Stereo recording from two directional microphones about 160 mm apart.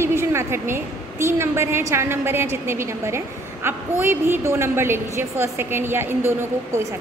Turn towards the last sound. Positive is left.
turn(degrees=-15)  # may be behind; listen again after turning